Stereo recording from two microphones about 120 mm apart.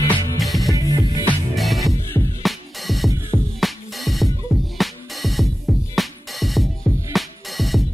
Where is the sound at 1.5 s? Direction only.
Centre (ahead or behind).